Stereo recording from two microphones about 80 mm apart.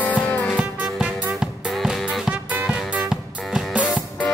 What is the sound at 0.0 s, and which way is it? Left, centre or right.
Music, centre.